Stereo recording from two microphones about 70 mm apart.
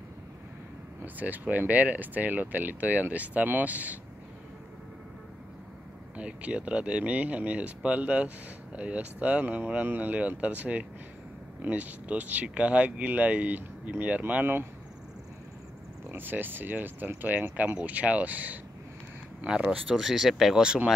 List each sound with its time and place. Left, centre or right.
1.0 s speech: right
6.1 s speech: centre
16.1 s speech: right; by 20.9 s centre